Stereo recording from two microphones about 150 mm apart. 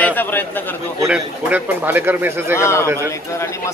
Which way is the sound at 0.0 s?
10° left (ahead or behind).